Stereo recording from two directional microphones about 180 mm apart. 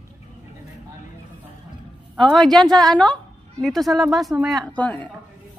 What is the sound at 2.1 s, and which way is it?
A woman's voice, centre (ahead or behind).